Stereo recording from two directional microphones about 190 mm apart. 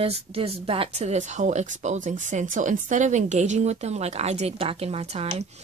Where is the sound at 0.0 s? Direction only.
30° right (ahead or behind).